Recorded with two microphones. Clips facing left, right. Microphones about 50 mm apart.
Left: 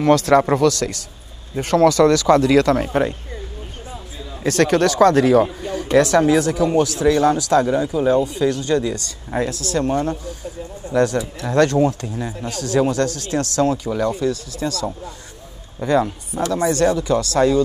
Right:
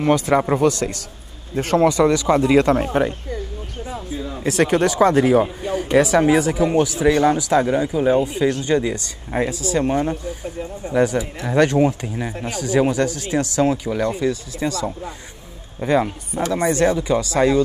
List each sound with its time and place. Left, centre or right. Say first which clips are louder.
0.0 s speech: left 3 dB; centre
4.4 s speech: left 1 dB; centre